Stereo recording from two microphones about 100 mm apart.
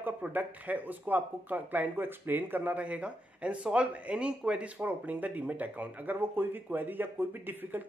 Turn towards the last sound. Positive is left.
turn(degrees=-20)  # may be behind; listen again after turning